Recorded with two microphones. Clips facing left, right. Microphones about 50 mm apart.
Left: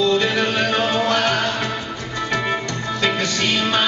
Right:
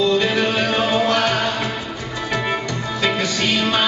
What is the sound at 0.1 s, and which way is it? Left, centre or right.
Music, centre.